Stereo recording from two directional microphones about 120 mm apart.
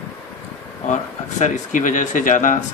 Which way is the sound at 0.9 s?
85° left.